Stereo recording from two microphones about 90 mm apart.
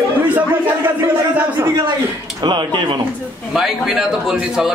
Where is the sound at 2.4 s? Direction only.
60° right (ahead or behind).